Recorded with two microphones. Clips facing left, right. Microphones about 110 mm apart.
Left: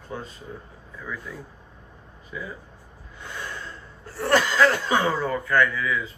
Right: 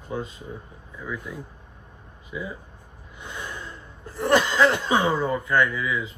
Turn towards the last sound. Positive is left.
turn(degrees=-20)  # may be behind; listen again after turning